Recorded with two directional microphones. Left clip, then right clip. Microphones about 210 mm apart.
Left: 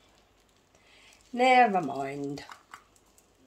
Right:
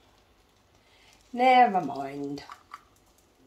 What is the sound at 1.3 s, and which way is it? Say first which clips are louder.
Speech: right 2 dB; 30° left (ahead or behind).